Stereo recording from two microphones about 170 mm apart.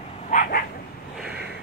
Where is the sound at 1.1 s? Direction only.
5° right (ahead or behind).